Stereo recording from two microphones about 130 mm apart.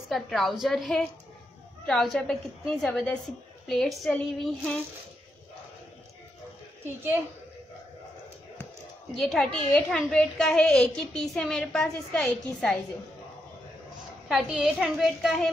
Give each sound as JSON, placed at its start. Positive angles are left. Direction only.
{"t": 0.1, "sound": "a woman's voice", "side_deg": 0}
{"t": 6.8, "sound": "a woman's voice", "side_deg": -15}
{"t": 9.2, "sound": "a woman's voice", "side_deg": 0}
{"t": 14.3, "sound": "a woman's voice", "side_deg": -5}